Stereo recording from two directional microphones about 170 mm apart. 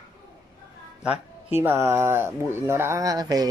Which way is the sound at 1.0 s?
10° right (ahead or behind).